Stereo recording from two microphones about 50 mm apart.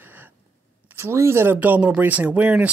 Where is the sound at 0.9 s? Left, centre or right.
Right.